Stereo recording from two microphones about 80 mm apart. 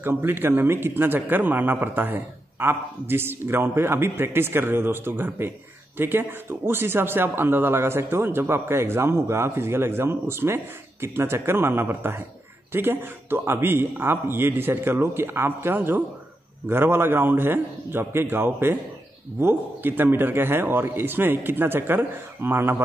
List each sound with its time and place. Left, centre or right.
0.0 s speech: right